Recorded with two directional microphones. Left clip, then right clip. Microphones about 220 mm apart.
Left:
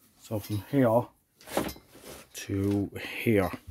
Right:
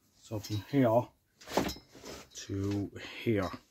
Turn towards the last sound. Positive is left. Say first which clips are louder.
# left 6 dB
turn(degrees=30)  # may be behind; listen again after turning